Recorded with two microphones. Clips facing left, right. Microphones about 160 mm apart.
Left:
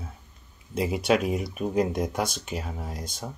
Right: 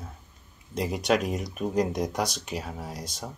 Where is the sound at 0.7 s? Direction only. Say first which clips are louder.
Left 2 dB; 5° left (ahead or behind).